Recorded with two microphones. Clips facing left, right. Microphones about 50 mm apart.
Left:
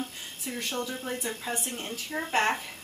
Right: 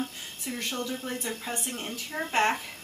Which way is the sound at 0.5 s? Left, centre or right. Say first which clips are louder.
Even; centre.